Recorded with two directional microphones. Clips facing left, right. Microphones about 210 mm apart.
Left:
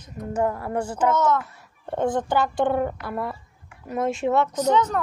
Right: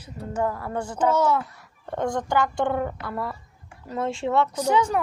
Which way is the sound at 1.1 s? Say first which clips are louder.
Right 1 dB; 10° right (ahead or behind).